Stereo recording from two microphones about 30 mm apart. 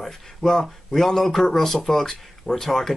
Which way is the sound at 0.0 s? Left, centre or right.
Centre.